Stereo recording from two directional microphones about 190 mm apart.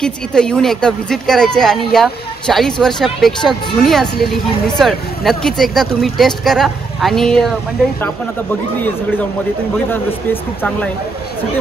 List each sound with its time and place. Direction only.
0.0 s speech: 5° left (ahead or behind)
9.8 s speech: 10° left (ahead or behind)